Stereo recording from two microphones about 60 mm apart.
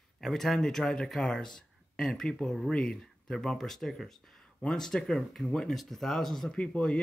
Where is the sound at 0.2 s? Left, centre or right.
Centre.